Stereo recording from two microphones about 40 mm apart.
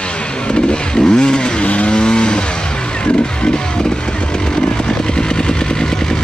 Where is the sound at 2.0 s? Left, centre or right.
Left.